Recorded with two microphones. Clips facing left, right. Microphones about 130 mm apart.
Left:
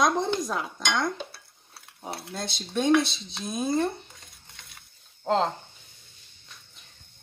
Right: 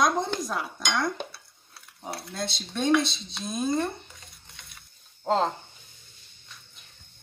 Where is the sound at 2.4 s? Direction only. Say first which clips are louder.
Left 2 dB; centre (ahead or behind).